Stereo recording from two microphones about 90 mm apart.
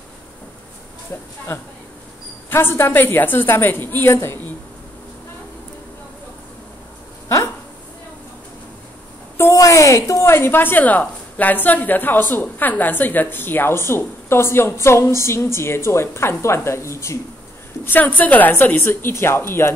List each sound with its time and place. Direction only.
1.5 s a woman's voice: 25° left (ahead or behind)
7.2 s a sound: 30° left (ahead or behind)
9.4 s a woman's voice: 35° left (ahead or behind)
17.8 s a woman's voice: 20° left (ahead or behind)